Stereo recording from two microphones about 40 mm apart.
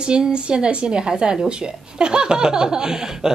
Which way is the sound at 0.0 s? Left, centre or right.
Centre.